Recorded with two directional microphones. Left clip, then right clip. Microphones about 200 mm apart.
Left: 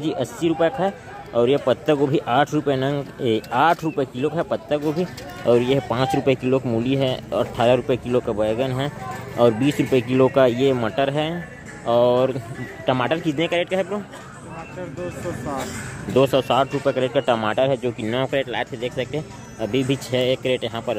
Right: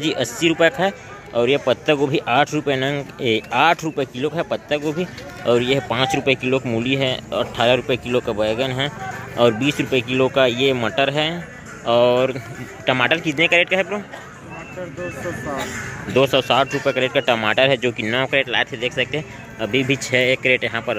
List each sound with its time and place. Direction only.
0.0 s speech: 5° left (ahead or behind)
1.3 s speech: 15° left (ahead or behind)
16.1 s speech: 20° left (ahead or behind)